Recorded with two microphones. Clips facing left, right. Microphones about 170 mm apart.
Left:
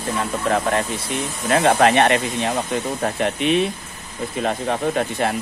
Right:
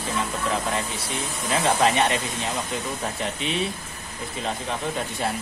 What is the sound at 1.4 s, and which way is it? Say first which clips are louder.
Speech: left 6 dB; 60° left (ahead or behind).